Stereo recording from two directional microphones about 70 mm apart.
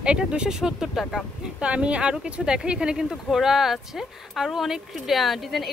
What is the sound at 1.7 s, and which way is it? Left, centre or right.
Speech, centre.